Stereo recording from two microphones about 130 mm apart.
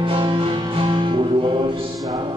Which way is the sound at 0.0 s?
40° right (ahead or behind).